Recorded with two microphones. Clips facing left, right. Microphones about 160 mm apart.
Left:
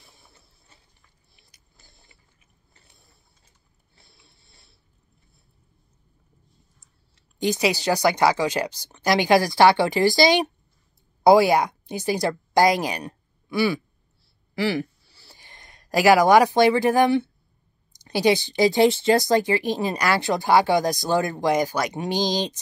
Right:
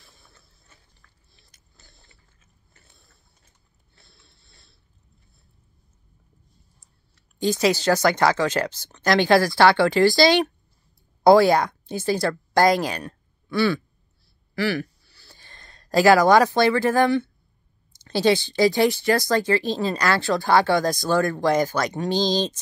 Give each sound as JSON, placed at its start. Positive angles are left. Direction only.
{"t": 0.0, "sound": "vehicle", "side_deg": 20}
{"t": 1.9, "sound": "mechanisms", "side_deg": 20}
{"t": 7.2, "sound": "speech", "side_deg": 20}
{"t": 14.5, "sound": "a sound", "side_deg": 25}
{"t": 18.0, "sound": "speech", "side_deg": 15}